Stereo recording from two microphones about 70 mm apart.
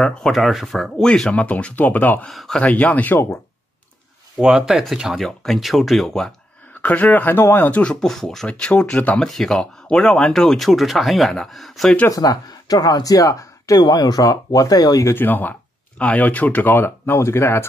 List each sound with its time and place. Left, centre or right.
0.0 s speech: centre
0.3 s speech: centre
1.0 s speech: centre
2.2 s speech: centre
2.6 s speech: left
4.4 s speech: centre
6.8 s speech: left
7.8 s speech: centre
8.5 s speech: centre
9.2 s speech: centre
12.1 s speech: left
13.8 s speech: left
15.1 s speech: left